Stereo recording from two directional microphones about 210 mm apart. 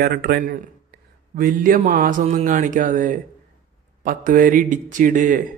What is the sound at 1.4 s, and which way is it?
Mantra, 40° right (ahead or behind).